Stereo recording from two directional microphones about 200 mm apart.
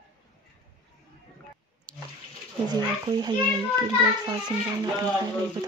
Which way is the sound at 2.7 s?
20° right (ahead or behind).